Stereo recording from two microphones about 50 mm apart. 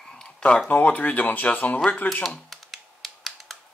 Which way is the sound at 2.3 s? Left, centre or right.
Centre.